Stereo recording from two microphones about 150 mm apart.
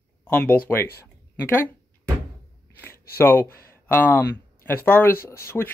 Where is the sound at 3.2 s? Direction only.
15° left (ahead or behind).